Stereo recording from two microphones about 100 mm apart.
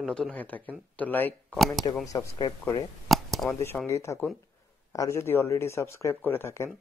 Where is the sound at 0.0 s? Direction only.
10° left (ahead or behind).